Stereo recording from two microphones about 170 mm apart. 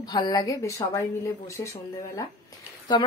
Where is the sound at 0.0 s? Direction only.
25° left (ahead or behind).